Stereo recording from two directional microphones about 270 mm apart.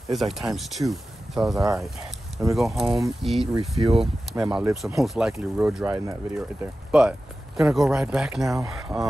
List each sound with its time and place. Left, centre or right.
0.1 s speech: centre
3.5 s speech: right
4.6 s speech: centre